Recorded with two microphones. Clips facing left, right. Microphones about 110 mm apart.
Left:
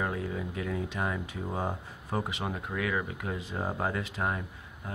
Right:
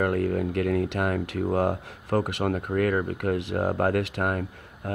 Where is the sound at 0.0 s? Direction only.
60° right (ahead or behind).